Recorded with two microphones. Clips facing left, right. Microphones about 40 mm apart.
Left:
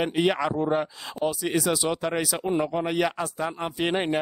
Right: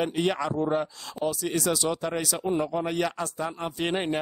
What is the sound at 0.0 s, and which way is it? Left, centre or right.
Speech, centre.